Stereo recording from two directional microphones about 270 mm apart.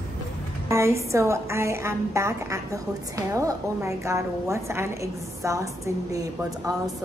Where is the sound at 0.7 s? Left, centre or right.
Centre.